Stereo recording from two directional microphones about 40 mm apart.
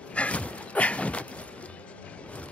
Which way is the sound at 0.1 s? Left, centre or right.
Left.